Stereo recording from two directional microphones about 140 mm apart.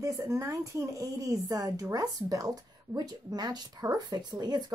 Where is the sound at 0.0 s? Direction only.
25° right (ahead or behind).